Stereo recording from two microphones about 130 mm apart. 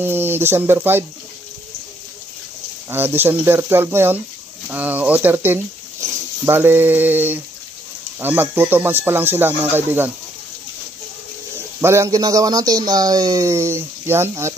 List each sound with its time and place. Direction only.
0.0 s speech: 15° right (ahead or behind)
2.9 s speech: 15° right (ahead or behind)
11.8 s speech: 20° right (ahead or behind)